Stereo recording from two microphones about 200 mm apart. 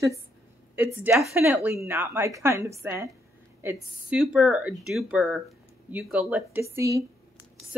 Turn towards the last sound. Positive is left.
turn(degrees=-15)  # may be behind; listen again after turning